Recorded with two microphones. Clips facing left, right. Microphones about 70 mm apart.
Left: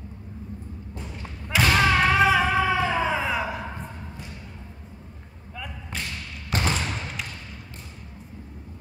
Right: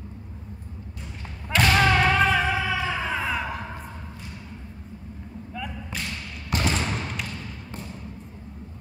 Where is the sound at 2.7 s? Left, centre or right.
Left.